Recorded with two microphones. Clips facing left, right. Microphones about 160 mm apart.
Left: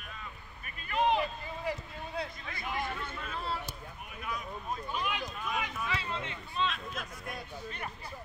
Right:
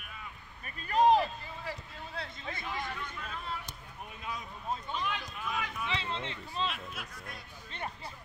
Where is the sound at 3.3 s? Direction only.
35° left (ahead or behind).